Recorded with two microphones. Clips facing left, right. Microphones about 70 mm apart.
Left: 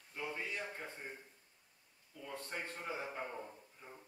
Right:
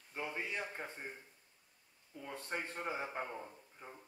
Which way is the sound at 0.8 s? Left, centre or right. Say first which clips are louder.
Right 1 dB; centre.